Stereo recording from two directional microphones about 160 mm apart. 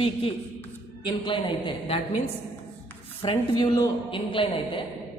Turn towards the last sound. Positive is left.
turn(degrees=30)  # may be behind; listen again after turning